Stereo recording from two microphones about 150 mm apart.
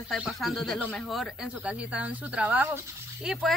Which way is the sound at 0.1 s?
Centre (ahead or behind).